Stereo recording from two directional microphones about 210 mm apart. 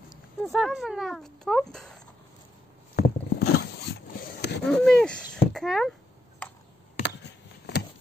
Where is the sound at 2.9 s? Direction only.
50° left (ahead or behind).